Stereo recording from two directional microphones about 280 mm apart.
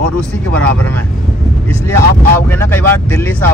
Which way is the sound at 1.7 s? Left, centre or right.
Centre.